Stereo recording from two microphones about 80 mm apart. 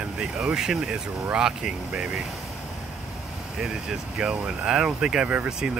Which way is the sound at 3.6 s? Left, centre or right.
Centre.